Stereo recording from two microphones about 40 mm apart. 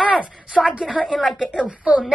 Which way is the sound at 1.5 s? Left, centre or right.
Right.